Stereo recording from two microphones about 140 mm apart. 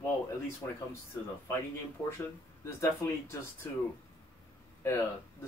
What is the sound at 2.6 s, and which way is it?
Speech, 20° left (ahead or behind).